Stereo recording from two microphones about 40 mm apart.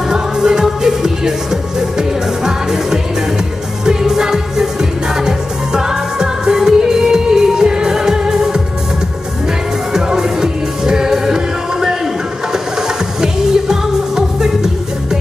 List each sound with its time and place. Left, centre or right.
0.1 s music: centre
5.2 s music of asia: centre
9.9 s music: centre